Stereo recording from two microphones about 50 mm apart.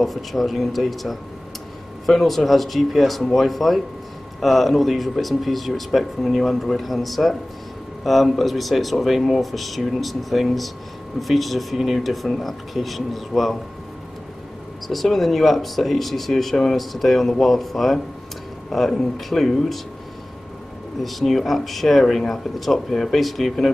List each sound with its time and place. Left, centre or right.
0.0 s speech: centre
14.9 s speech: centre
21.0 s speech: centre